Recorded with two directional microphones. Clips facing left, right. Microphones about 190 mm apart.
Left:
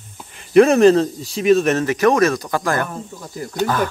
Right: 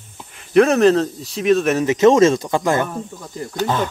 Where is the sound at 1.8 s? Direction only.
20° right (ahead or behind).